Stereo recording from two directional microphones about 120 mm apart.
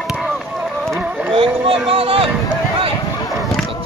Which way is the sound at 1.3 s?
50° right (ahead or behind).